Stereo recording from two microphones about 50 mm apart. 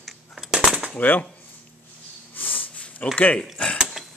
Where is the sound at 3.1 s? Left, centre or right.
Left.